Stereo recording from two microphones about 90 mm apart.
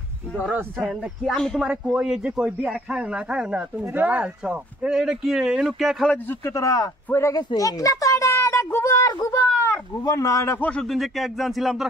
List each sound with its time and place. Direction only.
0.4 s speech: 15° right (ahead or behind)
1.2 s speech: 5° left (ahead or behind)
1.6 s speech: 10° right (ahead or behind)
6.4 s speech: 40° left (ahead or behind)
7.1 s speech: 30° left (ahead or behind)
7.3 s a sound: 40° left (ahead or behind)
10.5 s speech: 15° left (ahead or behind)
10.8 s speech: centre (ahead or behind)